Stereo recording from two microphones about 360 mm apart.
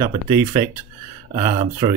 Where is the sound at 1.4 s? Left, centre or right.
Centre.